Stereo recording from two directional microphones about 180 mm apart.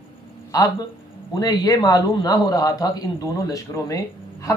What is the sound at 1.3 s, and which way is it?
A man's voice, 20° left (ahead or behind).